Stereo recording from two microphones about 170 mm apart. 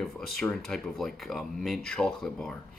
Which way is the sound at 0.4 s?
5° left (ahead or behind).